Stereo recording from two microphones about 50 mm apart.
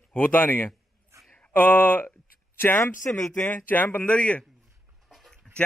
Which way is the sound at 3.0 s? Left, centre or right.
Left.